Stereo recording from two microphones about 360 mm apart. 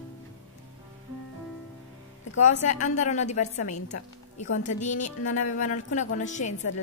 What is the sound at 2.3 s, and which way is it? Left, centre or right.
Speech, centre.